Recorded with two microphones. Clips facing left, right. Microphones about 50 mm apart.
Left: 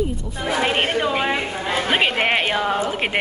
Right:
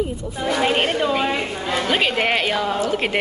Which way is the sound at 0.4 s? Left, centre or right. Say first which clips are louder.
Right 1 dB; centre.